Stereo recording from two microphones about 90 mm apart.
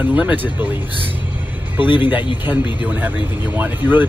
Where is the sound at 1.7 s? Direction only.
20° right (ahead or behind).